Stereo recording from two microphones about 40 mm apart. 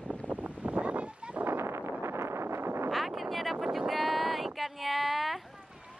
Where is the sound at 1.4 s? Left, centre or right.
Right.